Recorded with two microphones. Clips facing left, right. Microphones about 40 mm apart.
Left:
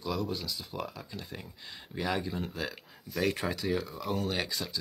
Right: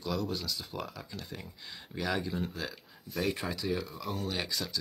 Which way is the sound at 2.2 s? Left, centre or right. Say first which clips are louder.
Right 1 dB; centre.